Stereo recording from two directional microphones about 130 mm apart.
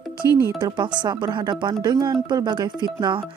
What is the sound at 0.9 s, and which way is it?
Speech, 35° right (ahead or behind).